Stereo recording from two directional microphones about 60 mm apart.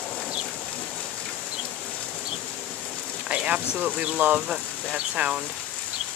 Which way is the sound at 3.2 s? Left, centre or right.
Right.